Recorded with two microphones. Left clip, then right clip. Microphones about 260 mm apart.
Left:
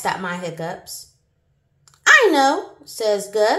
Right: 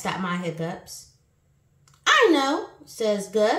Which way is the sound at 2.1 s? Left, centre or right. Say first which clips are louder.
Left 4 dB; centre.